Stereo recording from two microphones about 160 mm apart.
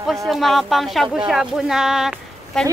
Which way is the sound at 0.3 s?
Centre (ahead or behind).